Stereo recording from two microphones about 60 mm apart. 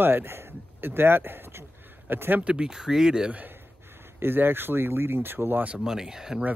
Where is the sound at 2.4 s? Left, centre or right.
Centre.